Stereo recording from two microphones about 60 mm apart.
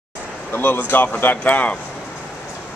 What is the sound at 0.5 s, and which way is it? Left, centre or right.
Speech, left.